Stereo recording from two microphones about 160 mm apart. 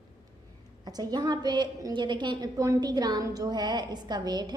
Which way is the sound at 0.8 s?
25° right (ahead or behind).